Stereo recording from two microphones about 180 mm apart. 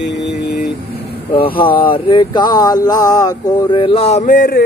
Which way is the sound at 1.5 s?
25° left (ahead or behind).